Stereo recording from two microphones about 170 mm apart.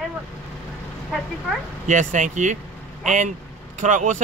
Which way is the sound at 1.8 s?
45° right (ahead or behind).